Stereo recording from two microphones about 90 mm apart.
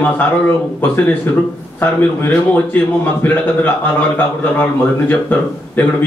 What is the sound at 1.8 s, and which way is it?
A man's voice, 20° left (ahead or behind).